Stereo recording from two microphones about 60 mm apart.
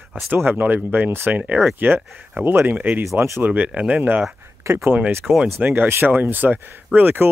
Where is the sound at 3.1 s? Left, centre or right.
Right.